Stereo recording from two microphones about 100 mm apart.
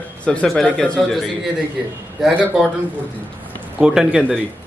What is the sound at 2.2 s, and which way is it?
Speech, centre (ahead or behind).